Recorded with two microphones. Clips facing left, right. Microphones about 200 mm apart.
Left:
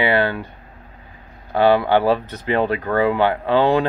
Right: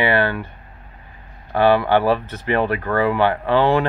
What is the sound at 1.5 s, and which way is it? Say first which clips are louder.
Speech: even; 15° left (ahead or behind).